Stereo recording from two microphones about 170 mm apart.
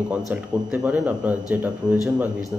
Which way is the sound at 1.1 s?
5° right (ahead or behind).